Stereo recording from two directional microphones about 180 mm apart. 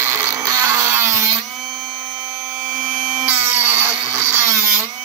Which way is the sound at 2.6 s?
5° right (ahead or behind).